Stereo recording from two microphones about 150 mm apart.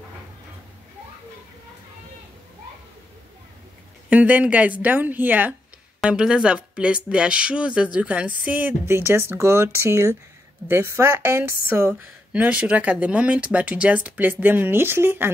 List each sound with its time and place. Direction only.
4.1 s speech: 10° right (ahead or behind)